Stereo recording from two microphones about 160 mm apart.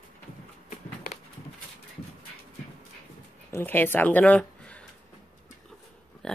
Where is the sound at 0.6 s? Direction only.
50° left (ahead or behind).